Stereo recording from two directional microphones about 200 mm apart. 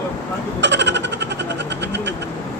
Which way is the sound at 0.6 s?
60° right (ahead or behind).